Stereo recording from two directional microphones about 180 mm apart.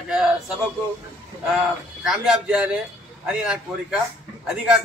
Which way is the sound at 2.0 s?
5° right (ahead or behind).